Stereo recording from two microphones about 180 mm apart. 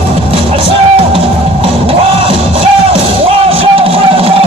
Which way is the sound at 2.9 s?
30° right (ahead or behind).